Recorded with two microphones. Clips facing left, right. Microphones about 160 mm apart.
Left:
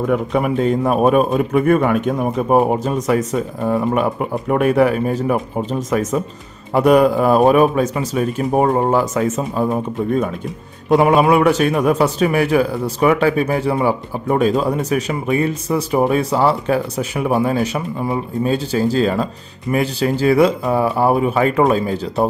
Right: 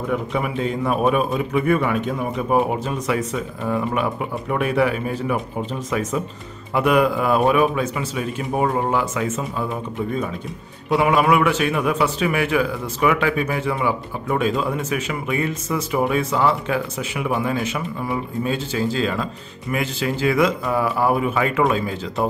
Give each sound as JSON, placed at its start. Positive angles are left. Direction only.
{"t": 0.1, "sound": "a man's voice", "side_deg": 50}